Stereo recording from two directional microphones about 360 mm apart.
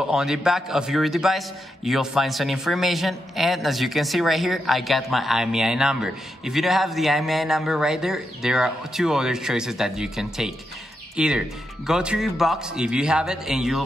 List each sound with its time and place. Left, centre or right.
0.1 s a man's voice: centre